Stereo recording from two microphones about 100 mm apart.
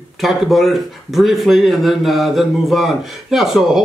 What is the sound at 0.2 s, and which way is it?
Speech, centre (ahead or behind).